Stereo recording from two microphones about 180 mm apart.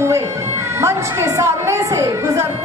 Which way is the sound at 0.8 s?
15° right (ahead or behind).